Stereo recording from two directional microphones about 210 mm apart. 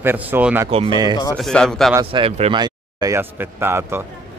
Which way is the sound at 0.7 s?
25° right (ahead or behind).